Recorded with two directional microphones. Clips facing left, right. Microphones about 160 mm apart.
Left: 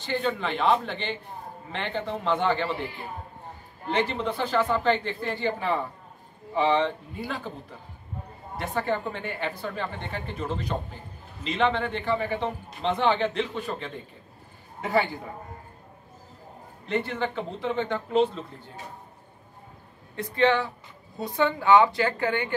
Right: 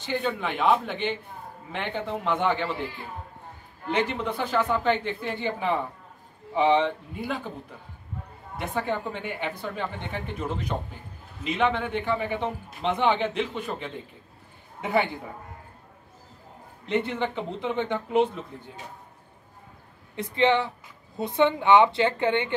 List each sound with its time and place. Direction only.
0.0 s speech: 10° right (ahead or behind)
2.7 s speech: 20° left (ahead or behind)
4.0 s speech: 15° right (ahead or behind)
8.5 s a man's voice: 15° right (ahead or behind)
16.8 s speech: 20° right (ahead or behind)
20.2 s a woman's voice: 20° right (ahead or behind)